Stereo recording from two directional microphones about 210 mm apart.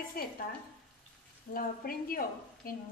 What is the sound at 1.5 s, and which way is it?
A woman's voice, 45° left (ahead or behind).